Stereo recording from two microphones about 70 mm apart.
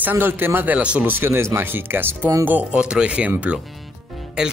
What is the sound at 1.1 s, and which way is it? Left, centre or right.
Speech, right.